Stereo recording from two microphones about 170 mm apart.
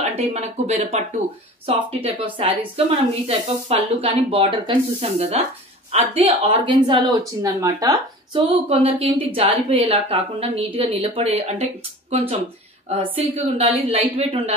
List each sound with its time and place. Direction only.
0.1 s speech: 40° right (ahead or behind)